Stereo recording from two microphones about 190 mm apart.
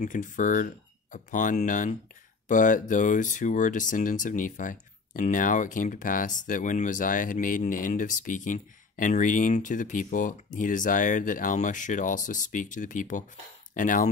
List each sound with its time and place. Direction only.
0.0 s speech: 40° left (ahead or behind)